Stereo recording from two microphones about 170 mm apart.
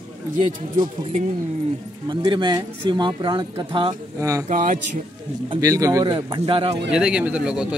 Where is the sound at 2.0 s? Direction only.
25° right (ahead or behind).